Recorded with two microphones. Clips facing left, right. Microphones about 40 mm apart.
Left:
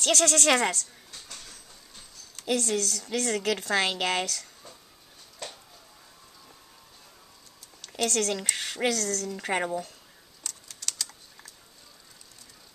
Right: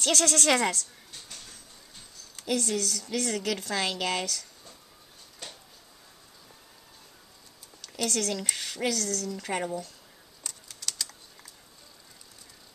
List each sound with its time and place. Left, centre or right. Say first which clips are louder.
0.0 s a woman's voice: left 2 dB; centre
2.5 s a woman's voice: left 1 dB; centre
3.3 s speech: left 3 dB; centre
3.7 s a woman's voice: left 4 dB; left
8.0 s speech: left 3 dB; centre
8.5 s speech: left 5 dB; left
8.9 s speech: left 1 dB; centre
9.3 s a woman's voice: left 3 dB; left
10.4 s typing: left 1 dB; centre
10.9 s typing: even; centre